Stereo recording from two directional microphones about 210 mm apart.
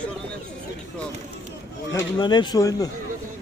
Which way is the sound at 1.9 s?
20° left (ahead or behind).